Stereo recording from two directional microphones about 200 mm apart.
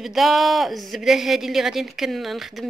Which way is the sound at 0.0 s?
Centre (ahead or behind).